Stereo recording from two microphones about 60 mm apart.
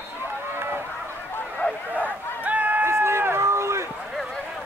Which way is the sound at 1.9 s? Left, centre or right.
Right.